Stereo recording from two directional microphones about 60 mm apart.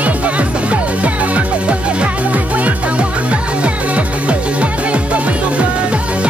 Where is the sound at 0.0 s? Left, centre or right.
Right.